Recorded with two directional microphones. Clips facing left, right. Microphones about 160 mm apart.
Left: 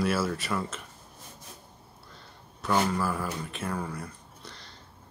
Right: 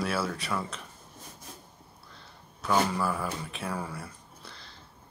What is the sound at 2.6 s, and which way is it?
Speech, centre (ahead or behind).